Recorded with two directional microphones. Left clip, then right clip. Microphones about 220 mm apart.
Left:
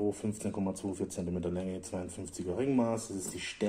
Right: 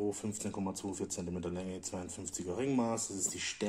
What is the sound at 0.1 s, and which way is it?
Speech, 15° right (ahead or behind).